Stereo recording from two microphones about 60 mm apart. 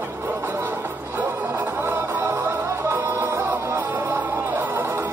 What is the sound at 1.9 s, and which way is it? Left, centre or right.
Music, right.